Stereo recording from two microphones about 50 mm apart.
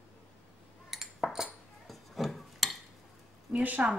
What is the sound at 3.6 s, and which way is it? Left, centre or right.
Speech, right.